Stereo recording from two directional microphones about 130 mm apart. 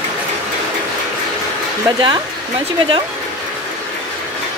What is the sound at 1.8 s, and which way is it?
Speech, 35° right (ahead or behind).